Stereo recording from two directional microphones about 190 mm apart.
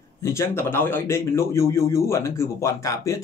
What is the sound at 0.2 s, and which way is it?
Speech, 15° left (ahead or behind).